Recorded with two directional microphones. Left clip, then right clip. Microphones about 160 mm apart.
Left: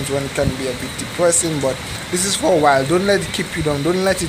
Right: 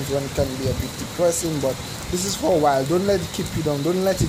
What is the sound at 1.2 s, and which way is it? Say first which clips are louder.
Speech: left 4 dB; 10° right (ahead or behind).